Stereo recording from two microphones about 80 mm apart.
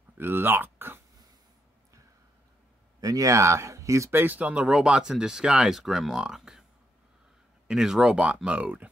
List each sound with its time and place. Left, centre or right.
0.2 s a sound: right
3.0 s speech: right
4.2 s speech: right
7.6 s speech: centre